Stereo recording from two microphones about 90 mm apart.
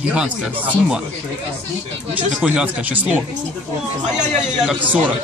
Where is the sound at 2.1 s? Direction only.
15° right (ahead or behind).